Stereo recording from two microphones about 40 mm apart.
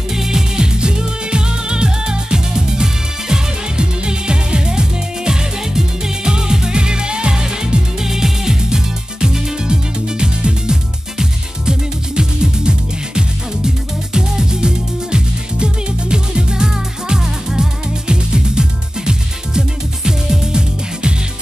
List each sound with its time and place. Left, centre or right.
0.1 s music: centre